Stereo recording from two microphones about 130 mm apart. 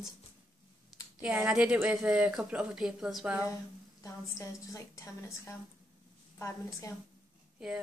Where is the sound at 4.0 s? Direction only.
25° left (ahead or behind).